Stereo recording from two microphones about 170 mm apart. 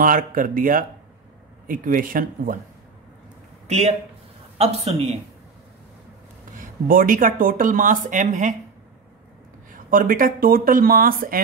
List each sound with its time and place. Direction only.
0.0 s speech: 55° right (ahead or behind)
3.6 s speech: 40° right (ahead or behind)
6.6 s speech: 55° right (ahead or behind)
9.7 s speech: 55° right (ahead or behind)